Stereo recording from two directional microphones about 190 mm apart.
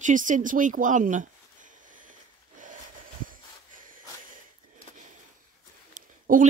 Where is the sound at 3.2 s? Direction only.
45° right (ahead or behind).